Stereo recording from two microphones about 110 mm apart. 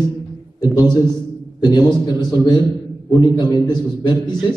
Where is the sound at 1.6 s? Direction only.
40° left (ahead or behind).